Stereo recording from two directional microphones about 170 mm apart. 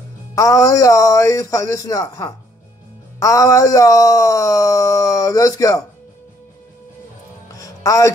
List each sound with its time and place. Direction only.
0.3 s speech: 20° left (ahead or behind)
7.5 s music: 20° left (ahead or behind)